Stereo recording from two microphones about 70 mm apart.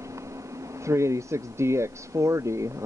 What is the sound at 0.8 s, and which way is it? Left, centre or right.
Speech, right.